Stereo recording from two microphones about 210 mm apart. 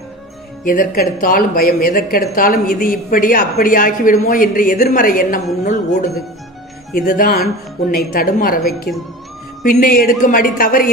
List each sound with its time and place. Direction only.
0.7 s a man's voice: 40° left (ahead or behind)